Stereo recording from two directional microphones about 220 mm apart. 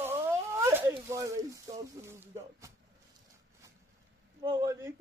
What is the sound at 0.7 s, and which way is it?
Speech, 10° right (ahead or behind).